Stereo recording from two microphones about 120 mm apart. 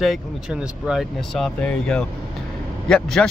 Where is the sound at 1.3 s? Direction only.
5° left (ahead or behind).